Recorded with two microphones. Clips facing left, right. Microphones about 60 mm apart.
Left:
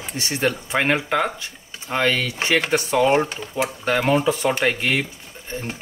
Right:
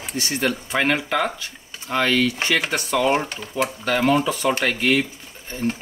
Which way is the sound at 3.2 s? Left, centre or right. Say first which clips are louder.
Left 3 dB; centre.